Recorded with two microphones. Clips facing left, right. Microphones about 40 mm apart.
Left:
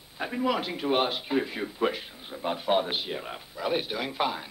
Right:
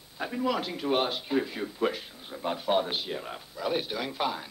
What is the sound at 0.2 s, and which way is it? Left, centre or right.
A man's voice, centre.